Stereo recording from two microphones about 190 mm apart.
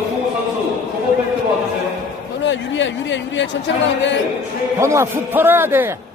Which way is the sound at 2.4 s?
70° left (ahead or behind).